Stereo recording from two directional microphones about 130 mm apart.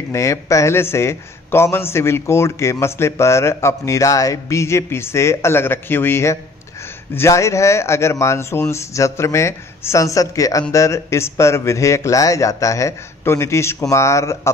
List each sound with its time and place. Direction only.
0.1 s a man's voice: 20° left (ahead or behind)